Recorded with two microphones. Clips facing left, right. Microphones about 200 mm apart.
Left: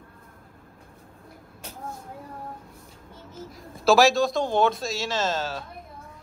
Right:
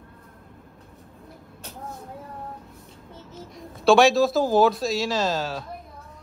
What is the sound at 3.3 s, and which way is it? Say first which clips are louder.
Speech: even; centre (ahead or behind).